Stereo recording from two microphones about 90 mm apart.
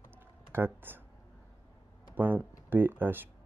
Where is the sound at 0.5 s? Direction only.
25° right (ahead or behind).